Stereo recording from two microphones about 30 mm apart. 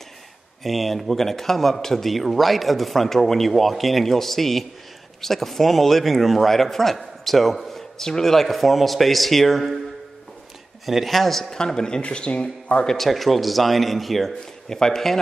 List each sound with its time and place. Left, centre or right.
0.7 s speech: centre
8.0 s speech: centre
10.9 s speech: centre
11.5 s speech: left
12.0 s speech: left
12.8 s speech: centre
13.1 s speech: centre